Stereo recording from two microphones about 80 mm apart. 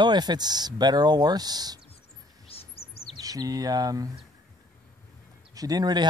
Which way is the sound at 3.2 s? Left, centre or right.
Right.